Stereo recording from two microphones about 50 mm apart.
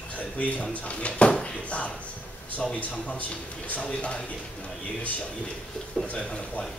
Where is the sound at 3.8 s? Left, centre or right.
Centre.